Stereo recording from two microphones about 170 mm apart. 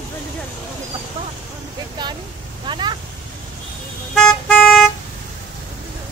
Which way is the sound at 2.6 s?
25° right (ahead or behind).